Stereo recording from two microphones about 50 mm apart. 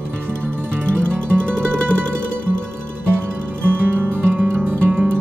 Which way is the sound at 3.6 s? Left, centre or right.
Right.